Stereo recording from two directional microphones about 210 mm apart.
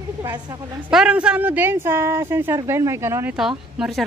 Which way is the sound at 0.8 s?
5° right (ahead or behind).